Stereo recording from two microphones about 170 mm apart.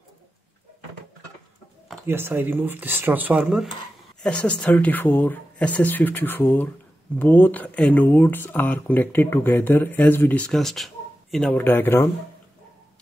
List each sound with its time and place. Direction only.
2.0 s speech: 15° right (ahead or behind)
4.2 s speech: 5° left (ahead or behind)